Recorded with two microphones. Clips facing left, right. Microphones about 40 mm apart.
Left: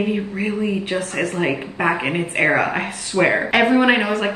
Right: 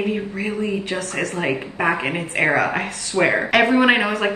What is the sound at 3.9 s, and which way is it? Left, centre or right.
Speech, right.